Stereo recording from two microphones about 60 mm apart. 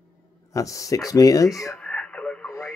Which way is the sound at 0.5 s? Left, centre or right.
Left.